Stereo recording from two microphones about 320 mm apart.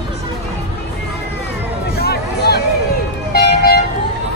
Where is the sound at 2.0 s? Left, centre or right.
Left.